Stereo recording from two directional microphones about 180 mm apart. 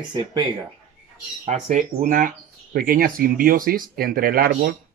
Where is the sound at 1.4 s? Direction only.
45° right (ahead or behind).